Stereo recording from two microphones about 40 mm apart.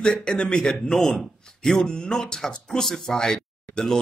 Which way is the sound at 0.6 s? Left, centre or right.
Centre.